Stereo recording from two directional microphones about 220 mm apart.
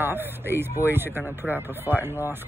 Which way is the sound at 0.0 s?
10° right (ahead or behind).